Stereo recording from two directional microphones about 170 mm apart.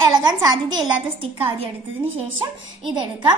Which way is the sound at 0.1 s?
25° right (ahead or behind).